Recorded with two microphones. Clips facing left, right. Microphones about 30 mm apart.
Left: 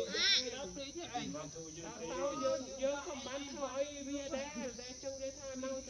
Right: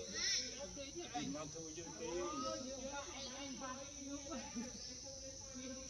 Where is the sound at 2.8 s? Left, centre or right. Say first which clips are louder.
Left 10 dB; left.